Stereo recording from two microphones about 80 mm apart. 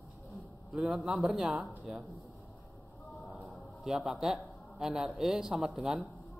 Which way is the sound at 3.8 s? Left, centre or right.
Centre.